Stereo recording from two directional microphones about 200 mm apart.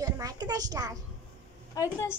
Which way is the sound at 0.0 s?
20° right (ahead or behind).